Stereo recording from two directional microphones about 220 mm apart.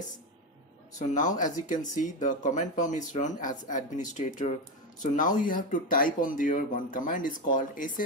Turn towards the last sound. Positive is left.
turn(degrees=35)  # may be behind; listen again after turning